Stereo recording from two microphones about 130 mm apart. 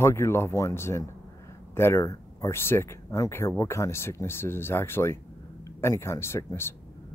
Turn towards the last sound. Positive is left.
turn(degrees=20)  # may be behind; listen again after turning